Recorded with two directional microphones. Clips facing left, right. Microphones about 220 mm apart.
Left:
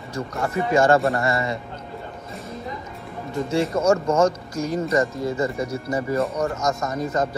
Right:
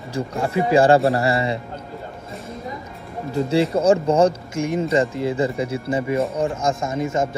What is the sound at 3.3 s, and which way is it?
Speech, 30° right (ahead or behind).